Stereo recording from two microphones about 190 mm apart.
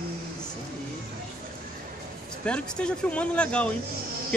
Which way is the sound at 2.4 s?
5° left (ahead or behind).